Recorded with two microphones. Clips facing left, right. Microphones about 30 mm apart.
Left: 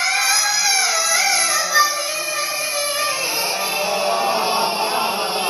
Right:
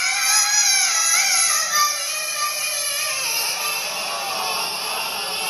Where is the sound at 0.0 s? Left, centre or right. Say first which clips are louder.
Left 3 dB; left.